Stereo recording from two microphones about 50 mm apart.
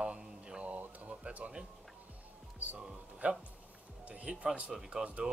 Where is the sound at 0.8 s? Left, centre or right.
Right.